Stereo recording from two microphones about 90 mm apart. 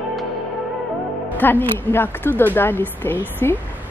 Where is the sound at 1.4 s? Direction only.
20° left (ahead or behind).